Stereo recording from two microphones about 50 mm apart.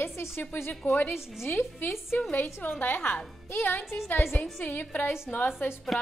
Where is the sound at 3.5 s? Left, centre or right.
Left.